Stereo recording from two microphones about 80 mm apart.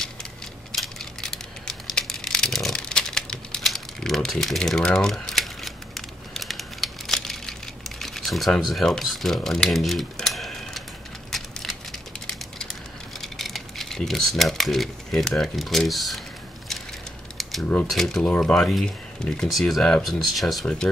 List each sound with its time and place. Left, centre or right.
0.0 s a sound: centre
8.0 s speech: centre
11.3 s a sound: centre
13.2 s speech: centre
17.4 s typing: centre
17.8 s speech: centre
20.6 s speech: centre